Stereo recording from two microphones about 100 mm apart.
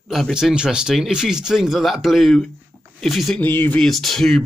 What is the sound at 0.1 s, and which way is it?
Speech, 5° right (ahead or behind).